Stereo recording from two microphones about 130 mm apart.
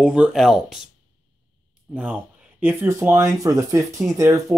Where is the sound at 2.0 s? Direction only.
15° right (ahead or behind).